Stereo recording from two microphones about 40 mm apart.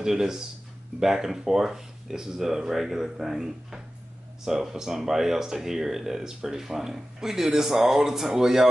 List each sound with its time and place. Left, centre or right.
0.0 s speech: centre